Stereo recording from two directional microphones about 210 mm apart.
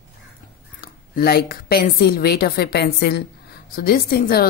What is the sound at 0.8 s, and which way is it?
A woman's voice, 45° left (ahead or behind).